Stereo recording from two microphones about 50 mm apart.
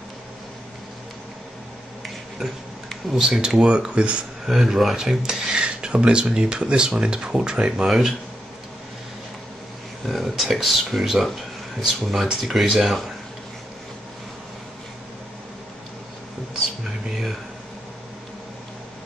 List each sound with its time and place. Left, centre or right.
2.0 s a sound: centre
3.3 s speech: centre
4.5 s speech: centre
5.6 s speech: centre
10.0 s speech: centre
17.1 s a sound: centre